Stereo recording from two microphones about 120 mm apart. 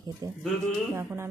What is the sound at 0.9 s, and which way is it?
Speech, 20° right (ahead or behind).